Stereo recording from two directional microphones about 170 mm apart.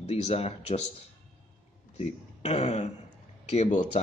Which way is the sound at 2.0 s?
40° left (ahead or behind).